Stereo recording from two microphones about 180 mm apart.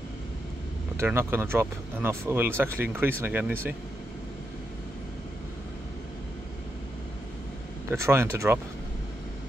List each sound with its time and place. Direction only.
0.9 s speech: 15° right (ahead or behind)
7.9 s speech: 15° right (ahead or behind)